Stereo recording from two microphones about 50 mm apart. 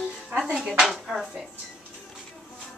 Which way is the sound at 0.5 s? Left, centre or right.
Centre.